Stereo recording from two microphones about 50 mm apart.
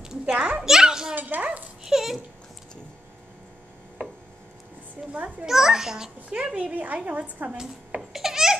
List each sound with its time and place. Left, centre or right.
0.0 s a sound: centre
0.6 s children playing: centre
1.1 s dog: right
1.9 s a sound: centre
5.4 s a child's voice: centre
6.5 s a woman's voice: right
8.1 s babbling: centre